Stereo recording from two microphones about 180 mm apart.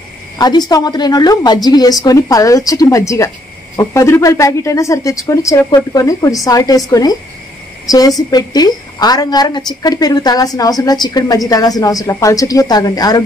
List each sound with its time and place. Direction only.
0.4 s a woman's voice: 20° left (ahead or behind)